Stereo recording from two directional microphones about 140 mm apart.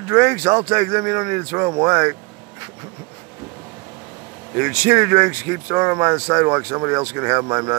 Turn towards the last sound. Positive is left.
turn(degrees=-25)  # may be behind; listen again after turning